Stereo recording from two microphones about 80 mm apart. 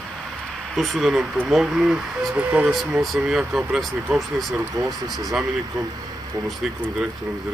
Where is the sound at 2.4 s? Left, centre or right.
Centre.